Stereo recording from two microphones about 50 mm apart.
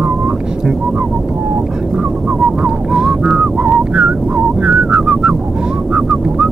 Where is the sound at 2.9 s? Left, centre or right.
Centre.